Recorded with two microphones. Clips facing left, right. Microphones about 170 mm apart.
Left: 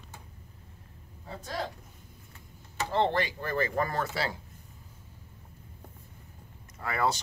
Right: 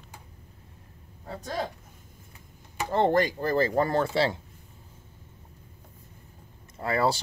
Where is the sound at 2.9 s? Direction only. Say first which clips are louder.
Right 5 dB; 45° right (ahead or behind); by 4.4 s 25° right (ahead or behind).